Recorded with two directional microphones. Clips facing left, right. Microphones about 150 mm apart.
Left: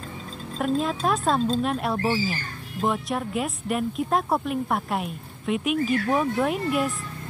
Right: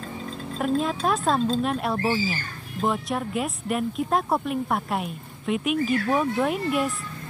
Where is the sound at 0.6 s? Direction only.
Centre (ahead or behind).